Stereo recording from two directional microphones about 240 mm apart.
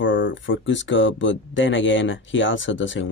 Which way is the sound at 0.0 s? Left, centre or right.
Left.